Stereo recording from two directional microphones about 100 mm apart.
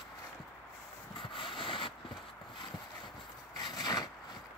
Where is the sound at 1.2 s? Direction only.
60° left (ahead or behind).